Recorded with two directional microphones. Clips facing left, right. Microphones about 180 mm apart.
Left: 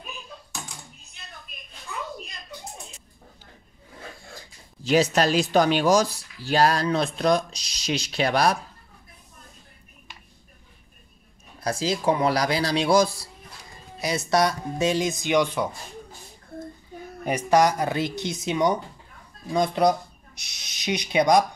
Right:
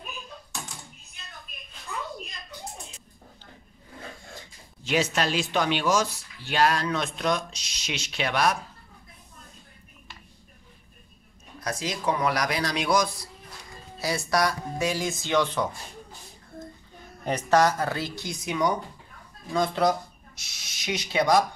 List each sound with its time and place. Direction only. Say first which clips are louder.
4.4 s speech: left 2 dB; 35° left (ahead or behind)
11.6 s speech: left 5 dB; 30° left (ahead or behind); by 15.7 s 15° left (ahead or behind)
17.2 s speech: left 2 dB; 10° left (ahead or behind)